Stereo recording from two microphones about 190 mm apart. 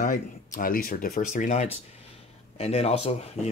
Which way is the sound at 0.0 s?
45° left (ahead or behind).